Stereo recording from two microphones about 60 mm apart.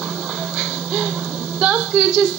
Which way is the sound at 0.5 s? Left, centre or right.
Centre.